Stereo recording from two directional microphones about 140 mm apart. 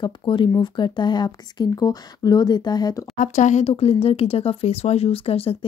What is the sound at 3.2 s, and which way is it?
Speech, 60° left (ahead or behind).